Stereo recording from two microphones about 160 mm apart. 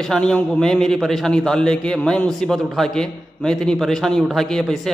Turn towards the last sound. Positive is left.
turn(degrees=0)  # may be behind; listen again after turning